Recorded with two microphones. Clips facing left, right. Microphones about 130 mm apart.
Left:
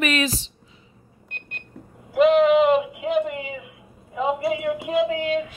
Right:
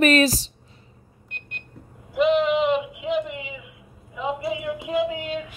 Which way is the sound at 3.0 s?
45° left (ahead or behind).